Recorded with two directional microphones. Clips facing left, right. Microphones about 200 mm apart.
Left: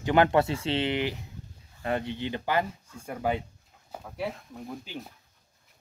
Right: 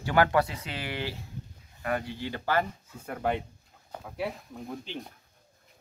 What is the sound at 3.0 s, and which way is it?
Speech, 5° left (ahead or behind).